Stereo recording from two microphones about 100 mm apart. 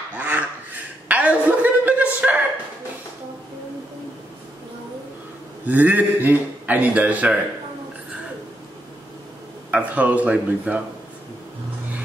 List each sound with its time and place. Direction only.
0.2 s a sound: 15° right (ahead or behind)
5.7 s a man's voice: 15° right (ahead or behind)
9.7 s a man's voice: 15° right (ahead or behind)